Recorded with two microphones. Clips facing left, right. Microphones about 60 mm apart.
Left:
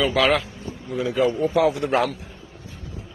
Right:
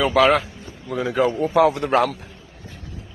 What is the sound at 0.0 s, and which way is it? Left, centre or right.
Speech, right.